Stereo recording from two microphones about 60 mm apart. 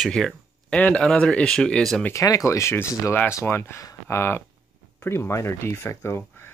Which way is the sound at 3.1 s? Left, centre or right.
Left.